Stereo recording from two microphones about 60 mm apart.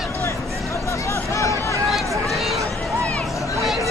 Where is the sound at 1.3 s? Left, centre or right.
Left.